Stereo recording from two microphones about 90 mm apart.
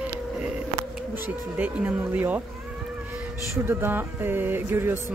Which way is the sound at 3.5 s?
25° right (ahead or behind).